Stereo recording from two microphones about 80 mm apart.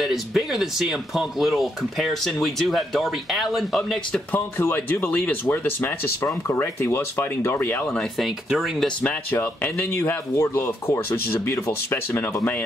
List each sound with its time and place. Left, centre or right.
0.0 s speech: centre
4.3 s speech: left
6.2 s speech: left
8.0 s speech: centre
9.3 s speech: left